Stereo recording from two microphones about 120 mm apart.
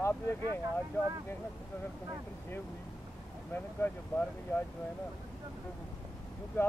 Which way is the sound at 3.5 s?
15° left (ahead or behind).